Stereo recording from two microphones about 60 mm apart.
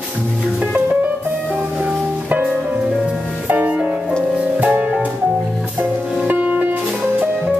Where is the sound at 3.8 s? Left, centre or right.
Centre.